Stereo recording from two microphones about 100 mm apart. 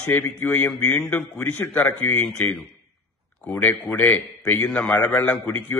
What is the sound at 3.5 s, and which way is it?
A man's voice, 20° left (ahead or behind).